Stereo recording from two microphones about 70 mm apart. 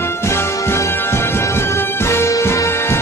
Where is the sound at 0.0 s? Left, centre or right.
Left.